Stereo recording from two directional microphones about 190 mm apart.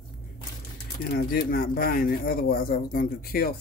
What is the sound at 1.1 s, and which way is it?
Speech, 50° left (ahead or behind).